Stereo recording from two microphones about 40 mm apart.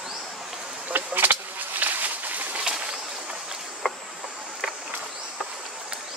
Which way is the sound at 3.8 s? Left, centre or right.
Left.